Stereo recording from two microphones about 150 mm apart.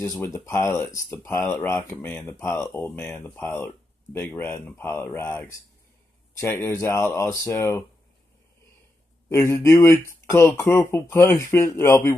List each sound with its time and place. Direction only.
0.0 s speech: 20° left (ahead or behind)
9.3 s speech: 15° left (ahead or behind)